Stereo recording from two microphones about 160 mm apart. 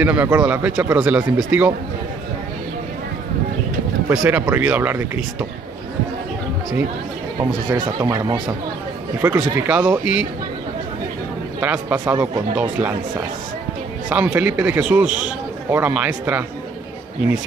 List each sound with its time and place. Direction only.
0.0 s a man's voice: 10° right (ahead or behind)
4.1 s a man's voice: 15° right (ahead or behind)
8.0 s a man's voice: 20° right (ahead or behind)
11.6 s a man's voice: 10° right (ahead or behind)
14.0 s a man's voice: 10° right (ahead or behind)